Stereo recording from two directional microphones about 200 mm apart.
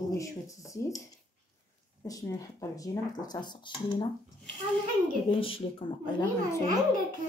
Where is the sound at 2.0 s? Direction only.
15° left (ahead or behind).